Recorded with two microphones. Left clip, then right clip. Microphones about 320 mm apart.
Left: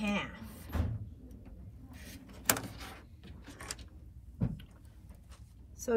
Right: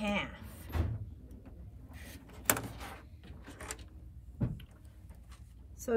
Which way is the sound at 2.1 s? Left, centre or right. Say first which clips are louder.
Even; centre.